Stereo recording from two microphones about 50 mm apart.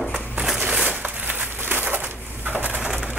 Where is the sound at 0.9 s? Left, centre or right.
Right.